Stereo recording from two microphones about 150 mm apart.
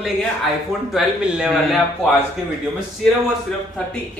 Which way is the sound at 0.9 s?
Centre (ahead or behind).